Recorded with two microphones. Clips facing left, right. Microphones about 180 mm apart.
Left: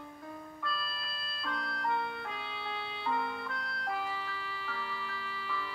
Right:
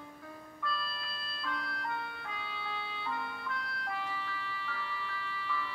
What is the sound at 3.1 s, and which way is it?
Music, 35° left (ahead or behind).